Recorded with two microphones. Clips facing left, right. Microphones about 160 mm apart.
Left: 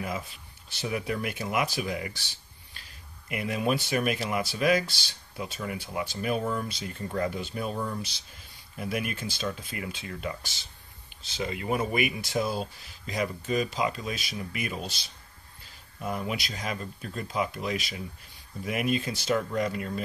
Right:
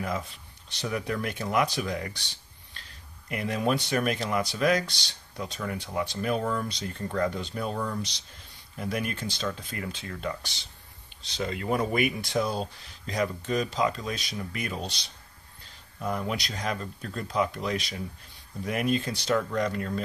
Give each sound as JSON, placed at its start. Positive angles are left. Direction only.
{"t": 0.7, "sound": "speech", "side_deg": 5}
{"t": 3.3, "sound": "speech", "side_deg": 10}
{"t": 7.7, "sound": "speech", "side_deg": 25}
{"t": 8.7, "sound": "speech", "side_deg": 5}